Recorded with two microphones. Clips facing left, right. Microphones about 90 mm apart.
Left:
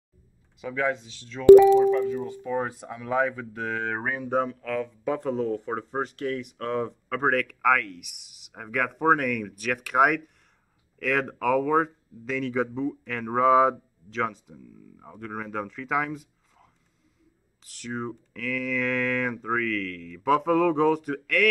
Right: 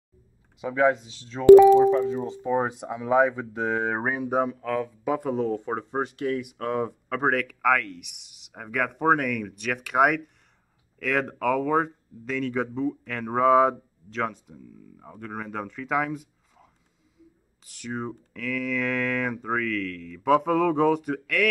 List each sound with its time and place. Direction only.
0.6 s speech: 25° right (ahead or behind); by 21.5 s centre (ahead or behind)